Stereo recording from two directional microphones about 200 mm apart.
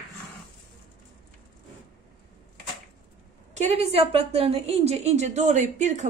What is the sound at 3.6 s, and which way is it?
A woman's voice, 35° right (ahead or behind).